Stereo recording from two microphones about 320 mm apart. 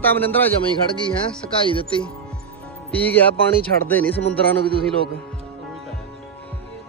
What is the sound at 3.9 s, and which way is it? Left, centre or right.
Speech, centre.